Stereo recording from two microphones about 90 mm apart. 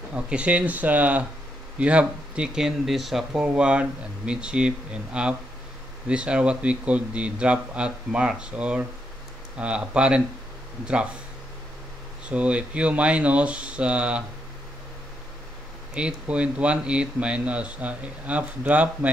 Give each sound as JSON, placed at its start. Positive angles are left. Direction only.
{"t": 0.1, "sound": "speech", "side_deg": -15}
{"t": 12.3, "sound": "speech", "side_deg": -15}
{"t": 15.9, "sound": "speech", "side_deg": -10}